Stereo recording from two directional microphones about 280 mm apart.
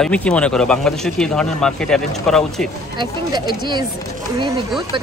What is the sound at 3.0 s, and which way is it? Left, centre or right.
Speech, centre.